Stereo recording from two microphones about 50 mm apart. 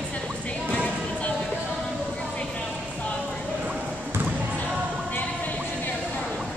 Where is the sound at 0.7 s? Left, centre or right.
Left.